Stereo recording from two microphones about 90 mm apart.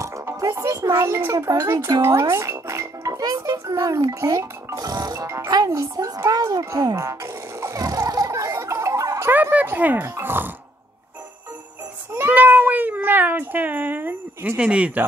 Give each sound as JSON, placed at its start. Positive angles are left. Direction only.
{"t": 0.0, "sound": "music", "side_deg": -35}
{"t": 0.6, "sound": "speech", "side_deg": -40}
{"t": 1.4, "sound": "speech", "side_deg": -40}
{"t": 7.0, "sound": "a sound", "side_deg": -35}
{"t": 9.3, "sound": "speech", "side_deg": -20}
{"t": 12.1, "sound": "cat", "side_deg": -20}